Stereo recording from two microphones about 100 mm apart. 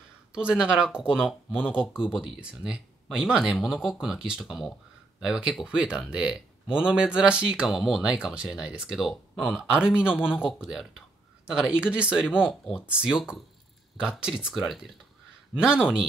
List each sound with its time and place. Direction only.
0.3 s speech: 10° right (ahead or behind)
11.9 s speech: 10° right (ahead or behind)